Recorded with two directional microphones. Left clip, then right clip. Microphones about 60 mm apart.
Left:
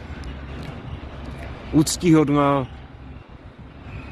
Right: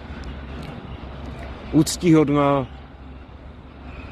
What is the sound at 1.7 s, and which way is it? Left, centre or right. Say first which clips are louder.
Speech: even; left.